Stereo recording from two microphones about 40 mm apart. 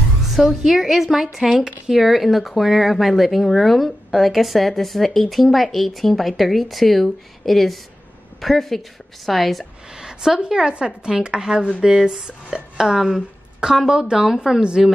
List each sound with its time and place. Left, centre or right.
0.3 s a woman's voice: centre
9.9 s a sound: centre
10.4 s a woman's voice: centre